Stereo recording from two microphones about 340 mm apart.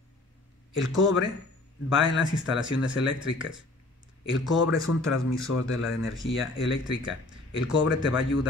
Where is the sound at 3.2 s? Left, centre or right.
Centre.